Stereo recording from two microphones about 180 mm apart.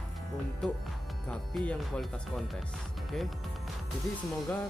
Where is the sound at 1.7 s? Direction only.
5° left (ahead or behind).